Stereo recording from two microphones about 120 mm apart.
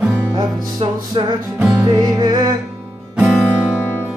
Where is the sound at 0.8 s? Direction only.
50° right (ahead or behind).